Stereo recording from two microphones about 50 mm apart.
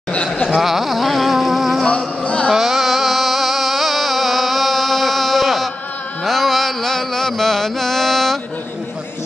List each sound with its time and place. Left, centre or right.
0.1 s a sound: left
0.6 s music: centre
1.9 s music: left
2.5 s music: centre
6.2 s mantra: centre